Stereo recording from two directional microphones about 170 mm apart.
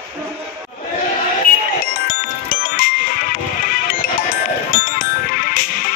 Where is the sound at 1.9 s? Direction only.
60° left (ahead or behind).